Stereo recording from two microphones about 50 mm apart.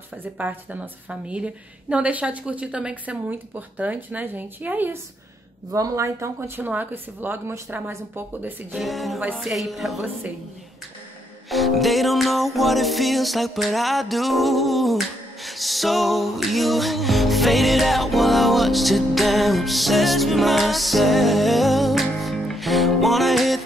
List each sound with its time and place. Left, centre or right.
0.2 s a woman's voice: right
5.7 s speech: right
6.5 s a woman's voice: right
8.7 s a woman's voice: centre
11.5 s music: centre